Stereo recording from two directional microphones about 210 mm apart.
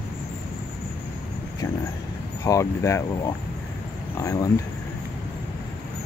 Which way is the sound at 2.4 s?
15° left (ahead or behind).